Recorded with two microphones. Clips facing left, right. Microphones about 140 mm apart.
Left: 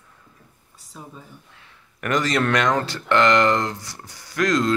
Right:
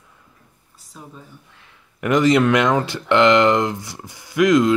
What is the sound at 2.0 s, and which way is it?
Speech, 20° right (ahead or behind).